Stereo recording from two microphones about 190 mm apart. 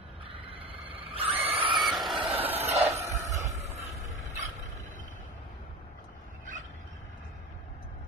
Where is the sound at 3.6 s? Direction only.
35° right (ahead or behind).